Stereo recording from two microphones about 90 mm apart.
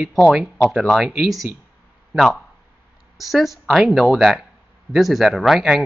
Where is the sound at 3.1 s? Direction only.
Centre (ahead or behind).